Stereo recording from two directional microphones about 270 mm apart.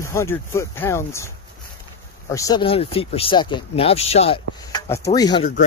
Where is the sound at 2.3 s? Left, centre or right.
Centre.